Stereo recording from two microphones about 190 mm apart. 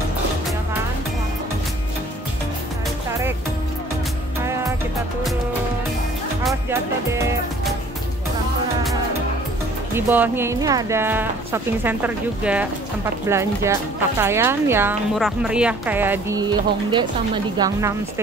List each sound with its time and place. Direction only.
9.9 s speech: 10° right (ahead or behind)